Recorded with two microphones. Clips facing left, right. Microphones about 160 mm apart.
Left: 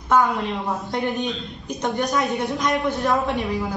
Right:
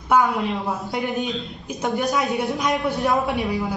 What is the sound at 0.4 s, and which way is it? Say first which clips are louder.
A woman's voice: right 1 dB; centre (ahead or behind).